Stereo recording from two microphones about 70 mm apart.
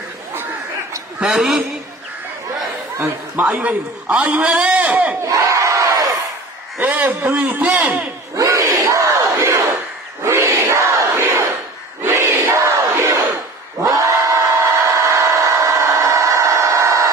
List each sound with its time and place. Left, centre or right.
1.2 s a man's voice: centre
3.3 s a man's voice: right
5.4 s battle cry: right
6.9 s a man's voice: right
8.4 s battle cry: right
12.0 s crowd: right
13.9 s a sound: right